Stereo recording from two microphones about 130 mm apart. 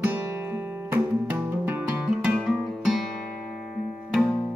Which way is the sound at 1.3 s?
15° right (ahead or behind).